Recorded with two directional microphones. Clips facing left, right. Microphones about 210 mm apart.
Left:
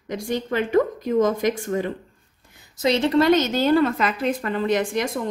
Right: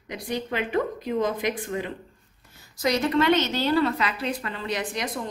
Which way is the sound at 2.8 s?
25° left (ahead or behind).